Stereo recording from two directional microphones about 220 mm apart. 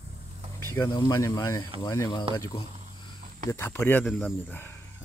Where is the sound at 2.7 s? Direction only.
35° right (ahead or behind).